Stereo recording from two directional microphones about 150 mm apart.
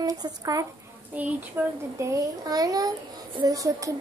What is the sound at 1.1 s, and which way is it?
A child's voice, 10° right (ahead or behind).